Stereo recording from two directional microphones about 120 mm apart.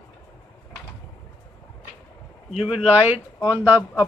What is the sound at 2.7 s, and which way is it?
Speech, 55° left (ahead or behind).